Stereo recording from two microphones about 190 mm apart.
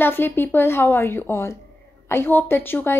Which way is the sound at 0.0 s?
10° left (ahead or behind).